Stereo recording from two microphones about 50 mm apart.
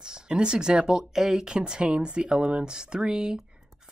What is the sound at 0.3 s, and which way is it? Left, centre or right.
Speech, centre.